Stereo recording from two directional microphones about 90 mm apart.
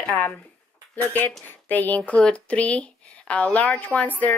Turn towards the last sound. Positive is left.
turn(degrees=15)  # may be behind; listen again after turning